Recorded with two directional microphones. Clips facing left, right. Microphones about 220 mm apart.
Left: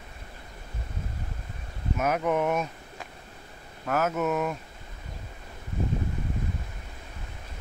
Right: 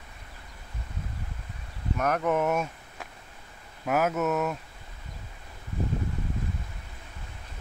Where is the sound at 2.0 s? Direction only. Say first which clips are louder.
Even; 5° left (ahead or behind).